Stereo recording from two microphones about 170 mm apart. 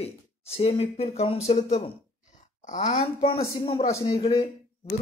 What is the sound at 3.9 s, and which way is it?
Speech, 20° left (ahead or behind).